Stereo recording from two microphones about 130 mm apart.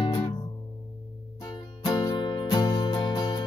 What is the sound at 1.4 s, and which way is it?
Music, 30° left (ahead or behind).